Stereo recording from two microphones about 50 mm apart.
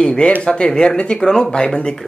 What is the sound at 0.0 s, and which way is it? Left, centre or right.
Speech, centre.